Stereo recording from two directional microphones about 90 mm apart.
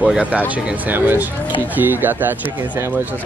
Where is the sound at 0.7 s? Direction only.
20° right (ahead or behind).